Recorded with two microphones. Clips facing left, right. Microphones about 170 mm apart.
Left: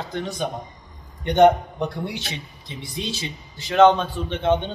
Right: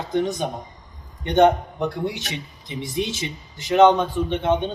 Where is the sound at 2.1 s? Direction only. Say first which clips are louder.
Right 1 dB; 15° right (ahead or behind).